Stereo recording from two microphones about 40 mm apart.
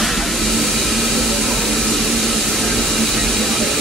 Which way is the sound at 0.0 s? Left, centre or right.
Centre.